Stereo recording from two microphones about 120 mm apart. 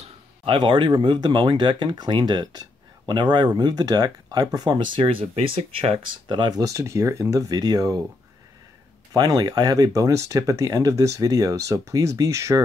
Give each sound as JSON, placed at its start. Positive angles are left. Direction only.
{"t": 0.6, "sound": "speech", "side_deg": -40}
{"t": 4.9, "sound": "speech", "side_deg": -50}
{"t": 6.6, "sound": "speech", "side_deg": -25}
{"t": 9.1, "sound": "speech", "side_deg": -35}